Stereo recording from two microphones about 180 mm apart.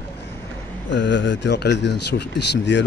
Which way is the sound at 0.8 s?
90° left.